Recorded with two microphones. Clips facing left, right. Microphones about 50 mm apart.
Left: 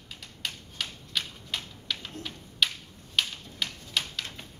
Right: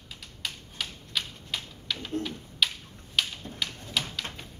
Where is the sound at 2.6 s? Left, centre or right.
Centre.